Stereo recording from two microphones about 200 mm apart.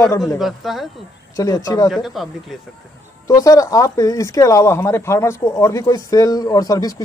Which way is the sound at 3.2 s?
15° left (ahead or behind).